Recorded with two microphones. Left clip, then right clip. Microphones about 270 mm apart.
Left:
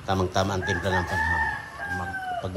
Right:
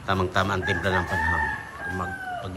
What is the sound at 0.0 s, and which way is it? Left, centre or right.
Speech, centre.